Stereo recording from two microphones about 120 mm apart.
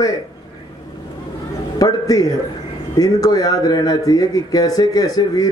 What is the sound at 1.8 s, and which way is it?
A man's voice, 30° left (ahead or behind).